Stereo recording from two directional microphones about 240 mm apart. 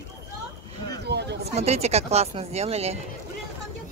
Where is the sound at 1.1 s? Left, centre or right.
Right.